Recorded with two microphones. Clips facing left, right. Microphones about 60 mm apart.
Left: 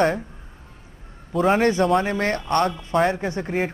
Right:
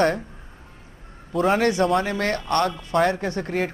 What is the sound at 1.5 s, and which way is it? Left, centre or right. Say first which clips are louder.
A woman's voice: left 1 dB; left.